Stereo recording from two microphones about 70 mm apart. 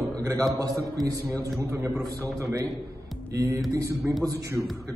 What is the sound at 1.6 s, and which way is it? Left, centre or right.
Speech, right.